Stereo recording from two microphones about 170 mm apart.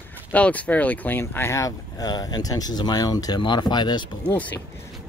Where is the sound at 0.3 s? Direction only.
10° left (ahead or behind); by 4.4 s 25° left (ahead or behind).